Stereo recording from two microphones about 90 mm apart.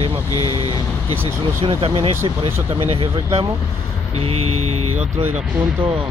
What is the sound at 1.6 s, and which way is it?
Speech, 90° right.